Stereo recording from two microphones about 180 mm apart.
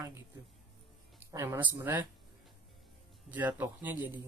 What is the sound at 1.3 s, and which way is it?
Speech, 15° right (ahead or behind).